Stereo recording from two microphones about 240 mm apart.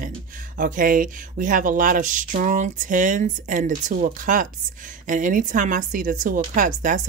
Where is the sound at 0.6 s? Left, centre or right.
Right.